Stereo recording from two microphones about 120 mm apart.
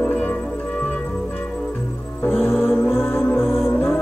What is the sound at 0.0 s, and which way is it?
Music, 10° left (ahead or behind).